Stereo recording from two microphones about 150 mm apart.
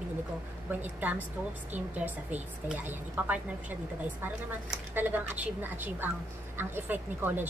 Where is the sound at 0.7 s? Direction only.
10° right (ahead or behind).